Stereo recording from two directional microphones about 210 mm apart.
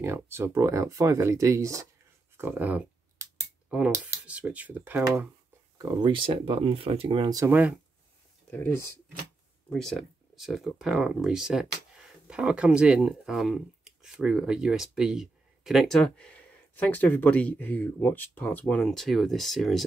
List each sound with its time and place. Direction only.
0.0 s speech: 10° right (ahead or behind)
2.3 s a sound: 10° right (ahead or behind)
3.7 s speech: 5° right (ahead or behind)
8.5 s speech: 10° left (ahead or behind)